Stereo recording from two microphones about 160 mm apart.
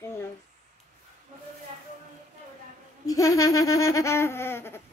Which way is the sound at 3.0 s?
20° left (ahead or behind).